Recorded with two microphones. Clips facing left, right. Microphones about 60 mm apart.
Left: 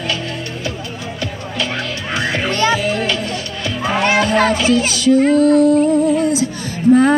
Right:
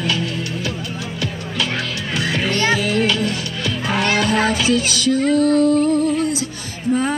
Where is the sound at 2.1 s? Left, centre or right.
Centre.